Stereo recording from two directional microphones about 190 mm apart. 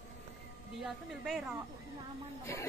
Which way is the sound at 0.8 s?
Centre (ahead or behind).